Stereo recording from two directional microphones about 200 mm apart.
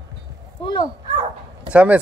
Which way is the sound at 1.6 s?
5° right (ahead or behind).